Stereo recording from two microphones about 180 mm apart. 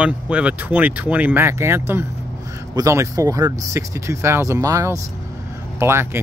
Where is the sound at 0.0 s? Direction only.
5° right (ahead or behind).